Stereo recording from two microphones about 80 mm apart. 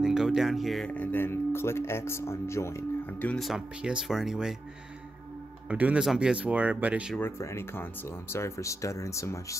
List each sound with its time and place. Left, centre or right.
0.0 s speech: centre
0.8 s speech: left
3.3 s speech: centre
5.7 s speech: centre
7.3 s speech: left
7.7 s speech: left